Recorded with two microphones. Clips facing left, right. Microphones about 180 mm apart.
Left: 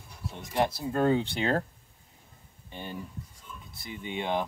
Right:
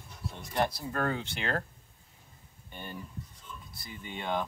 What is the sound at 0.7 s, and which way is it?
Speech, 25° left (ahead or behind).